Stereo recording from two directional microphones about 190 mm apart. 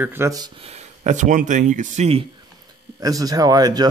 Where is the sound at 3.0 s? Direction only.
20° right (ahead or behind).